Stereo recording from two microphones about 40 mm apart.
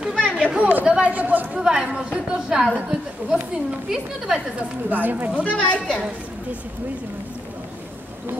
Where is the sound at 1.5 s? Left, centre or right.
Right.